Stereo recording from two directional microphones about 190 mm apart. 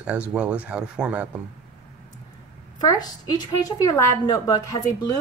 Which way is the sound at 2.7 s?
20° left (ahead or behind).